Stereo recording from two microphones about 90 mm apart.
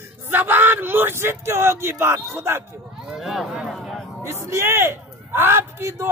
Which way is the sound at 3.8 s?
Centre (ahead or behind).